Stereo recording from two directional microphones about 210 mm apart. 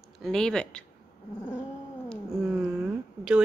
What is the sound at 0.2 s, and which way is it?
Speech, centre (ahead or behind).